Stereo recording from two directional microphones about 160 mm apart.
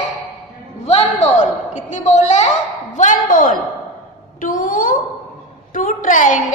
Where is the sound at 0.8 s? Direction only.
40° left (ahead or behind).